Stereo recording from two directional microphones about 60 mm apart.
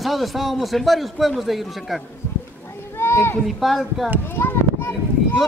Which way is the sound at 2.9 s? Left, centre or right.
Left.